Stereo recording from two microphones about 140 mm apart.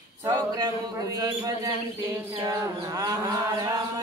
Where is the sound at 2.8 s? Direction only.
25° right (ahead or behind).